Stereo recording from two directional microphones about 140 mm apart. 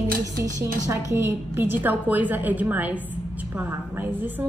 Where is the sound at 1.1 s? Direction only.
20° right (ahead or behind).